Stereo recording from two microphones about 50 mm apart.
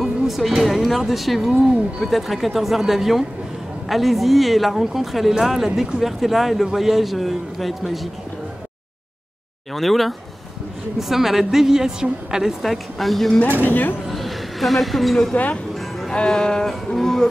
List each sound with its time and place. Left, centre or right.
0.0 s a sound: centre
0.7 s a man's voice: centre
9.8 s a man's voice: centre
12.6 s a man's voice: centre
13.7 s speech: left
14.0 s a sound: centre
15.3 s speech: left
16.1 s music: centre